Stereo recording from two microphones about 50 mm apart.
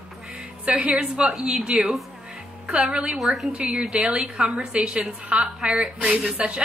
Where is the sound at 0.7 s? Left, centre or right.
Right.